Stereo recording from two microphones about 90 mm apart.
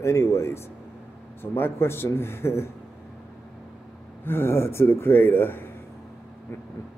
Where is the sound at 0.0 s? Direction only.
30° left (ahead or behind).